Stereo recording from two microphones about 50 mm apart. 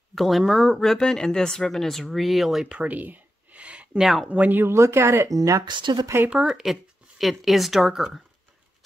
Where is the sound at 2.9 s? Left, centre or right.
Right.